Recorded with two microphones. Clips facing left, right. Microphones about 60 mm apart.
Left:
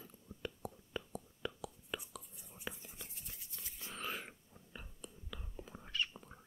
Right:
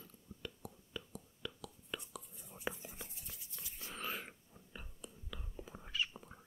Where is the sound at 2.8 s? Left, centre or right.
Right.